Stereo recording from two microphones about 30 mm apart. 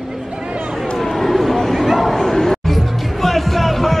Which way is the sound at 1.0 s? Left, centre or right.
Centre.